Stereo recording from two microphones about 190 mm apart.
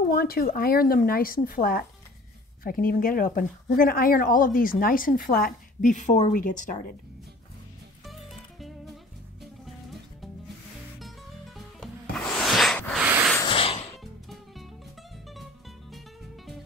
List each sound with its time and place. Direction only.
0.1 s a woman's voice: 50° left (ahead or behind)
8.0 s music: centre (ahead or behind)
13.0 s a sound: 5° right (ahead or behind)
13.4 s cat: 25° left (ahead or behind)
14.3 s music: centre (ahead or behind)